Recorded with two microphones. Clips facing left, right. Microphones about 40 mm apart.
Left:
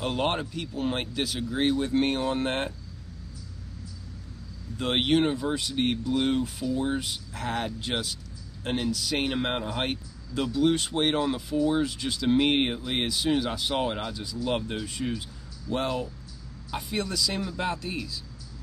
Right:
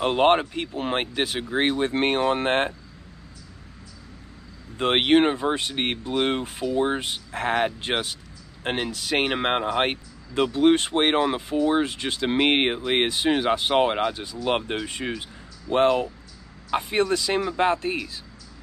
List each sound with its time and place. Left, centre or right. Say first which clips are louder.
0.0 s speech: right 8 dB; right
4.7 s speech: right 5 dB; right